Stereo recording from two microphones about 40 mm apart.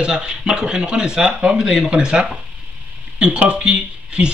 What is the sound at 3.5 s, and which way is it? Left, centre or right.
Speech, right.